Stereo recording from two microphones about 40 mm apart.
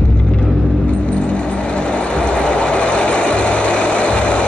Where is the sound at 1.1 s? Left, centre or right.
Left.